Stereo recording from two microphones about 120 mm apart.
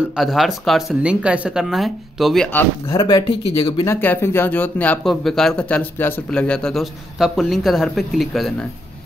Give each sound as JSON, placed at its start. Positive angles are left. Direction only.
{"t": 0.1, "sound": "speech", "side_deg": 0}
{"t": 2.9, "sound": "speech", "side_deg": 35}
{"t": 3.8, "sound": "speech", "side_deg": 20}
{"t": 5.0, "sound": "speech", "side_deg": 5}